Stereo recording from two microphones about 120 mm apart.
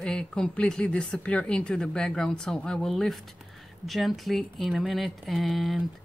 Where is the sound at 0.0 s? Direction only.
5° left (ahead or behind).